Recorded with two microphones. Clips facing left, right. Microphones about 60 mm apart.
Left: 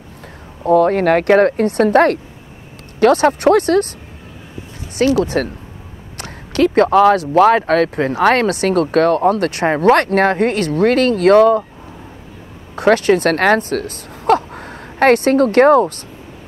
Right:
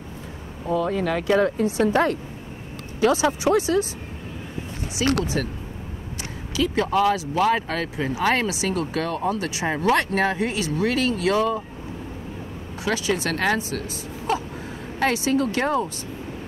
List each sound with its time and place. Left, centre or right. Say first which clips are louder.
0.7 s speech: left 11 dB; left
5.2 s speech: left 8 dB; left
6.5 s speech: left 10 dB; left
12.7 s speech: left 12 dB; left